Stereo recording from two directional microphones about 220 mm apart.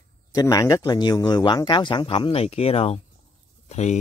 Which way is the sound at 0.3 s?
15° left (ahead or behind).